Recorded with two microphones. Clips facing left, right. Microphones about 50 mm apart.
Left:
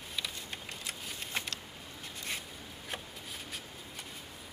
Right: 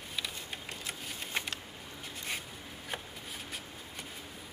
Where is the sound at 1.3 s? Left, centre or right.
Centre.